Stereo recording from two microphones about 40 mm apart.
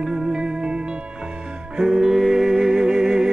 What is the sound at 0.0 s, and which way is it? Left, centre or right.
Music, centre.